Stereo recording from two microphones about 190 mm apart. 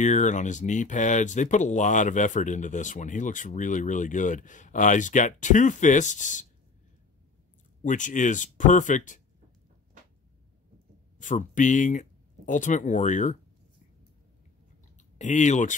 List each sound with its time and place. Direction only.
0.0 s speech: 40° left (ahead or behind)
7.8 s speech: 40° left (ahead or behind)
11.1 s speech: 40° left (ahead or behind)
15.0 s speech: 40° left (ahead or behind)